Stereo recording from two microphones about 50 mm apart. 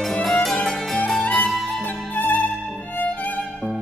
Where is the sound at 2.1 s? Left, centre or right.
Left.